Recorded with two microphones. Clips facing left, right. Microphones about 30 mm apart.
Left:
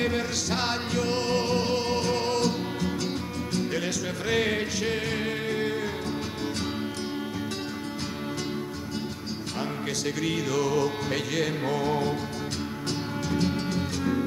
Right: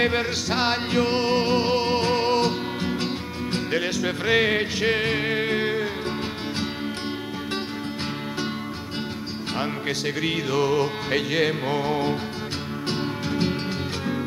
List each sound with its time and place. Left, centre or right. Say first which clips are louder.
0.0 s music: right 4 dB; right
9.6 s music: right 4 dB; right